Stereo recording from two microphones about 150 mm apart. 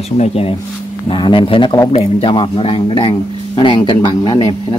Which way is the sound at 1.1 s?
35° left (ahead or behind).